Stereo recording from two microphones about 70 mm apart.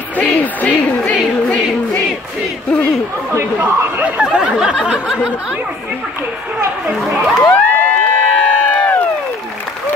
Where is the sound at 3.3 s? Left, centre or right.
Right.